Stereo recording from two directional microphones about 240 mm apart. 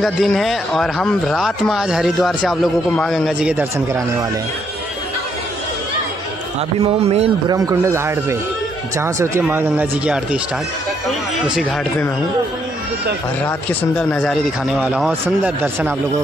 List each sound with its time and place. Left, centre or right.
0.0 s speech: centre
6.8 s speech: right
7.5 s speech: centre
11.4 s speech: centre
13.5 s speech: centre